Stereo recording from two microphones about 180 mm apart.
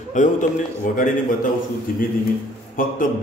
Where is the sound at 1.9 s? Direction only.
50° left (ahead or behind).